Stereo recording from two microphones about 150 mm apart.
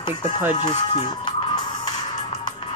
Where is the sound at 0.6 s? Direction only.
30° left (ahead or behind).